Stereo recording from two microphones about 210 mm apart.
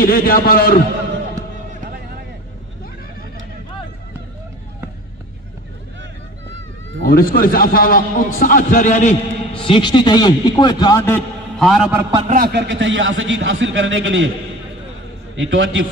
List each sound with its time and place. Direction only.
0.0 s a man's voice: 45° left (ahead or behind)
7.1 s a man's voice: 45° left (ahead or behind); by 11.2 s 15° left (ahead or behind)
11.5 s a man's voice: centre (ahead or behind)
12.0 s a man's voice: 20° right (ahead or behind)
12.3 s a man's voice: 45° right (ahead or behind); by 14.3 s 65° right (ahead or behind)
15.3 s a man's voice: 65° right (ahead or behind)